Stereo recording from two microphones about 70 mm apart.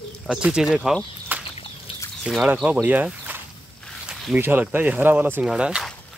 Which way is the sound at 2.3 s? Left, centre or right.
Centre.